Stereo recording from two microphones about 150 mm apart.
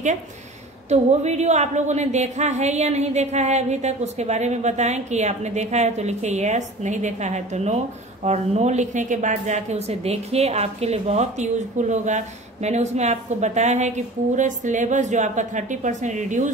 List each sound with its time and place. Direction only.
0.8 s a woman's voice: 50° right (ahead or behind)